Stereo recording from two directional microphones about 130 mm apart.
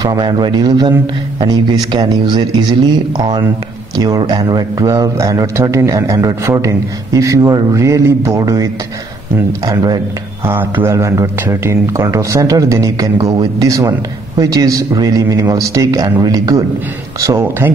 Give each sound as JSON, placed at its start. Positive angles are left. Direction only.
{"t": 0.0, "sound": "a man's voice", "side_deg": -35}
{"t": 9.7, "sound": "a man's voice", "side_deg": -30}
{"t": 10.4, "sound": "a man's voice", "side_deg": -15}